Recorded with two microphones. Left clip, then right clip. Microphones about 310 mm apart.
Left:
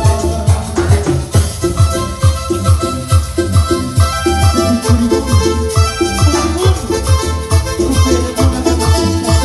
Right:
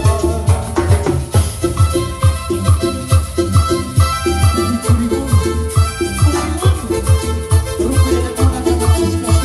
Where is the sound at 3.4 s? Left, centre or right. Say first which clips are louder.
Left 1 dB; left.